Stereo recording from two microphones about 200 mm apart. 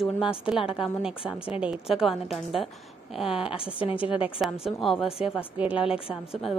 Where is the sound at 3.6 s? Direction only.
25° left (ahead or behind).